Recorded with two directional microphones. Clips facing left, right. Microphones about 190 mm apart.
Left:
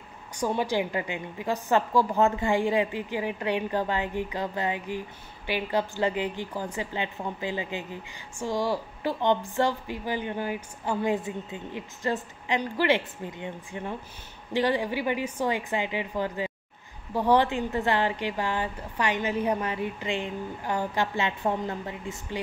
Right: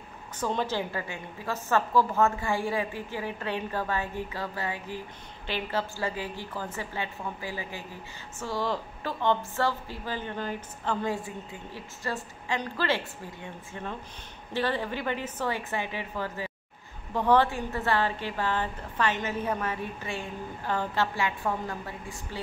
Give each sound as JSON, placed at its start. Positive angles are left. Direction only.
{"t": 0.4, "sound": "a woman's voice", "side_deg": 10}